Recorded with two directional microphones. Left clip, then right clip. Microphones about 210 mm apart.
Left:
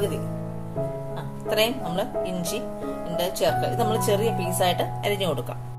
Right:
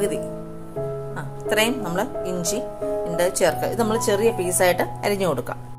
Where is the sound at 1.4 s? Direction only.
25° right (ahead or behind).